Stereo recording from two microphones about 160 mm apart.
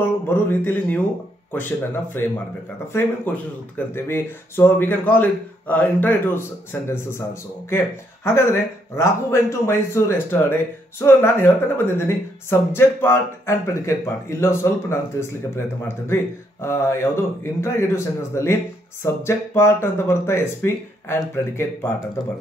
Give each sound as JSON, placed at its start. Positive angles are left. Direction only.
{"t": 0.3, "sound": "speech", "side_deg": 10}
{"t": 16.6, "sound": "speech", "side_deg": 15}